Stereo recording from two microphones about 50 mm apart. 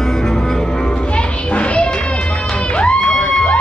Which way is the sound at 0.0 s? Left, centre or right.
Centre.